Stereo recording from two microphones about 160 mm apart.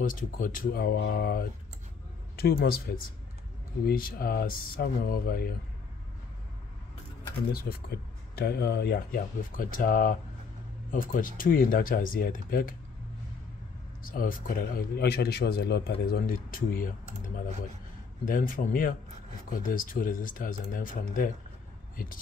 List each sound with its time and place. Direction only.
0.0 s speech: 55° left (ahead or behind)
3.8 s speech: 65° left (ahead or behind)
7.5 s speech: 75° left (ahead or behind)
14.0 s speech: 60° left (ahead or behind)
18.2 s speech: 60° left (ahead or behind)